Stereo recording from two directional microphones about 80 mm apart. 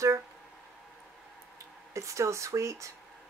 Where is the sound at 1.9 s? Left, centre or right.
Right.